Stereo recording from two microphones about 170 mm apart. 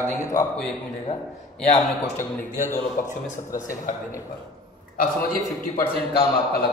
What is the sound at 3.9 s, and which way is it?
Speech, 50° left (ahead or behind).